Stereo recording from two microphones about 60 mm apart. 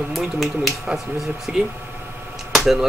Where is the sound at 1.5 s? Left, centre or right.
Centre.